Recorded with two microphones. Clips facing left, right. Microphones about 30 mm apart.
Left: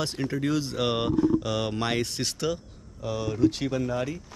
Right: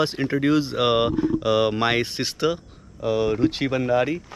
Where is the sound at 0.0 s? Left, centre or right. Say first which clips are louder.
Right 7 dB; right.